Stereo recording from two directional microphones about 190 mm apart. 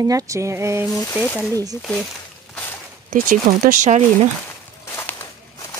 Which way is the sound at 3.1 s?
45° right (ahead or behind).